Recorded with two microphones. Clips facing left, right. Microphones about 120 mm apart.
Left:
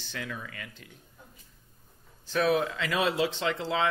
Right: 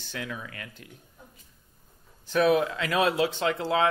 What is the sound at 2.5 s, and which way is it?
Speech, 50° right (ahead or behind).